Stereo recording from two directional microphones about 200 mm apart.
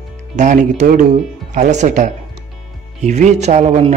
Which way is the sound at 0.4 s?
40° right (ahead or behind).